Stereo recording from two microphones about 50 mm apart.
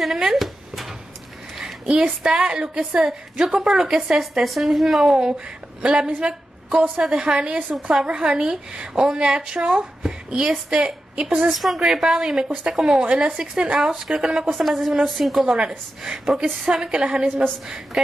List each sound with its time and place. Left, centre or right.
0.0 s a sound: centre
1.6 s a sound: centre
2.2 s a woman's voice: centre
5.8 s a woman's voice: centre
7.7 s a woman's voice: centre
8.1 s a woman's voice: centre
11.5 s a woman's voice: centre
13.0 s speech: right
14.5 s a woman's voice: centre